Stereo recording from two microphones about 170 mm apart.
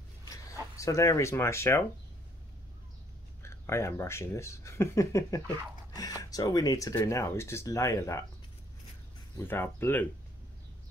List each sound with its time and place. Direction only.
0.3 s speech: 20° left (ahead or behind)
3.4 s speech: 15° left (ahead or behind)
9.4 s speech: 15° left (ahead or behind)